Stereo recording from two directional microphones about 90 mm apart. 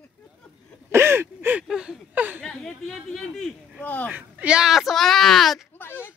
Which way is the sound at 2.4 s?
10° left (ahead or behind).